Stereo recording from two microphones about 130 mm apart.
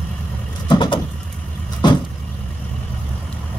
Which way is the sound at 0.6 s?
35° left (ahead or behind).